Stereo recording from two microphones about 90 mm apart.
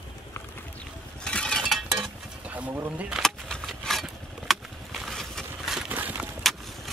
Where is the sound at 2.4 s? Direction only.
15° right (ahead or behind).